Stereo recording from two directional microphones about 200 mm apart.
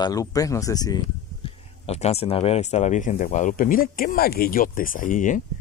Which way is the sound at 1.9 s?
30° left (ahead or behind).